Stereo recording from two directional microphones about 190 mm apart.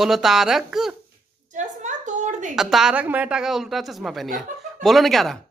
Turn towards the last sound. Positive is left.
turn(degrees=0)  # may be behind; listen again after turning